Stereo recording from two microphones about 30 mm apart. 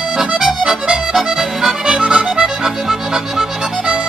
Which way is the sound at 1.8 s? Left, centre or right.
Right.